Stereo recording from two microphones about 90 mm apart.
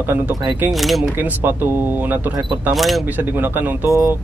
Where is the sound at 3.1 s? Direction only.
20° right (ahead or behind).